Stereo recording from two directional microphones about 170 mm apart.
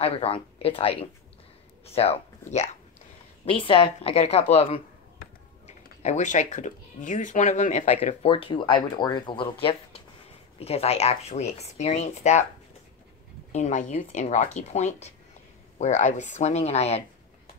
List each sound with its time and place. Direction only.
0.0 s speech: 35° left (ahead or behind)
2.0 s speech: 35° left (ahead or behind)
13.5 s speech: 45° left (ahead or behind)